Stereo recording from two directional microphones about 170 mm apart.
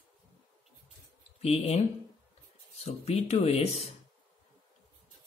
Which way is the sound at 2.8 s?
40° left (ahead or behind).